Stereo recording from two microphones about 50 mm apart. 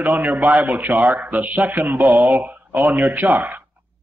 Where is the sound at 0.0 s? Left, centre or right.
Right.